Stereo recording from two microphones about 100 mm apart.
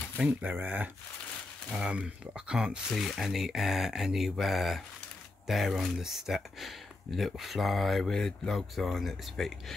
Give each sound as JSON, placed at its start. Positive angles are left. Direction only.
{"t": 0.2, "sound": "speech", "side_deg": -10}